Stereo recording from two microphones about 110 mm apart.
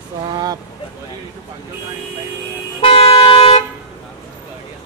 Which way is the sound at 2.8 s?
55° left (ahead or behind).